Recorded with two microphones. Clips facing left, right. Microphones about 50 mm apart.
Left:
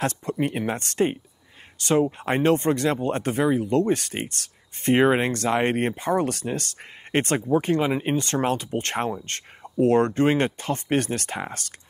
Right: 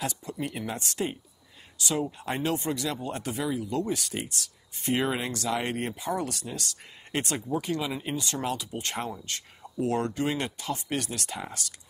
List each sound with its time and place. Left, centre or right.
0.0 s speech: left